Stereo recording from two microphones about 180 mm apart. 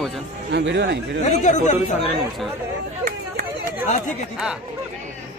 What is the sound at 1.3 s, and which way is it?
Speech, 40° left (ahead or behind).